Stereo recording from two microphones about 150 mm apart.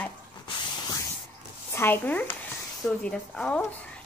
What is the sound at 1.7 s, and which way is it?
A child's voice, 15° left (ahead or behind).